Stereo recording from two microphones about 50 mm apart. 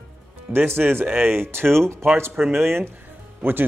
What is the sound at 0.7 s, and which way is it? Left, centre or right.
Speech, right.